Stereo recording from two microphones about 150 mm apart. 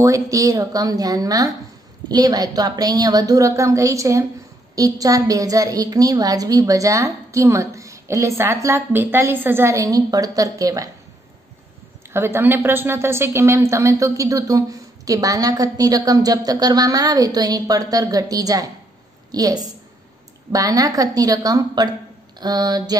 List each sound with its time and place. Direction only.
0.0 s a woman's voice: 20° right (ahead or behind)
12.1 s a woman's voice: 15° right (ahead or behind)